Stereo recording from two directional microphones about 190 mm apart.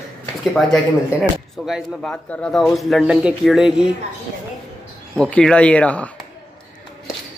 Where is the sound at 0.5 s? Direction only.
Centre (ahead or behind).